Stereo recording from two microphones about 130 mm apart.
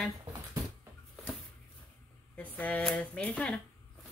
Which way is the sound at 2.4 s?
10° left (ahead or behind).